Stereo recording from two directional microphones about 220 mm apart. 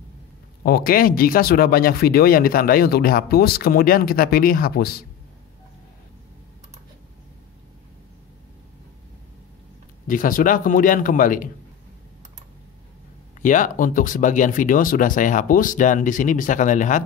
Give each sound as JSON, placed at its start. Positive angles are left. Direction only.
{"t": 0.7, "sound": "speech", "side_deg": 40}
{"t": 10.0, "sound": "speech", "side_deg": 40}
{"t": 13.4, "sound": "speech", "side_deg": 35}